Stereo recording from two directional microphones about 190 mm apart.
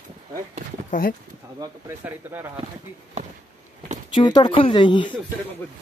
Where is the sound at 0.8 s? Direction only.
45° left (ahead or behind).